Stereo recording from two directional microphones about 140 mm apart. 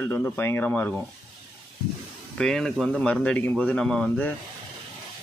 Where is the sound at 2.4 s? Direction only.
5° left (ahead or behind).